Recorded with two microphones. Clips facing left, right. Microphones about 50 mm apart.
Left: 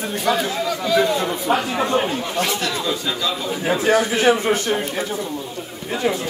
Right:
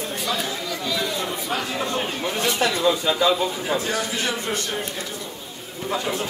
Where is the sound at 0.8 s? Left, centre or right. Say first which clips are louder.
Left 9 dB; left.